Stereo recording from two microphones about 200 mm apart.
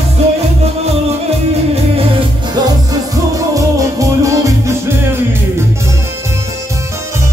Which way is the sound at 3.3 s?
15° right (ahead or behind).